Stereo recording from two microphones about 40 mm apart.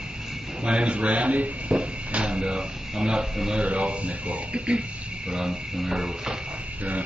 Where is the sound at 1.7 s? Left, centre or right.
Right.